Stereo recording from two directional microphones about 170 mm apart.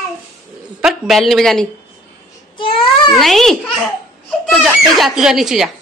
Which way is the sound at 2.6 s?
30° left (ahead or behind).